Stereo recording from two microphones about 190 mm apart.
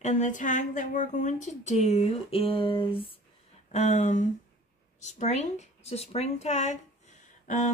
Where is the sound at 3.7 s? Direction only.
40° left (ahead or behind).